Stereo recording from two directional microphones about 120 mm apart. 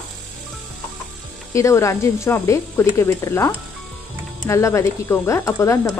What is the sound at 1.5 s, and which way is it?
Speech, 25° left (ahead or behind).